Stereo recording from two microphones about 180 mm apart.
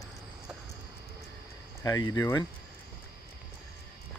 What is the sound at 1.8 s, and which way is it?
Speech, 20° left (ahead or behind).